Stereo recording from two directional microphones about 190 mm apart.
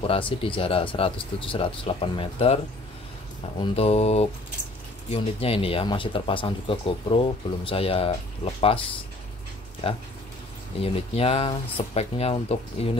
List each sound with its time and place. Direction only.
0.0 s speech: 30° left (ahead or behind)
3.6 s speech: 30° left (ahead or behind)